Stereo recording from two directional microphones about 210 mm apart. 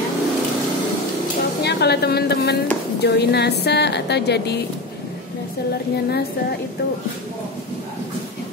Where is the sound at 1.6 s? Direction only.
50° left (ahead or behind).